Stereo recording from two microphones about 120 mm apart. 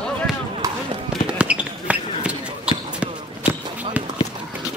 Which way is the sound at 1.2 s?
10° right (ahead or behind).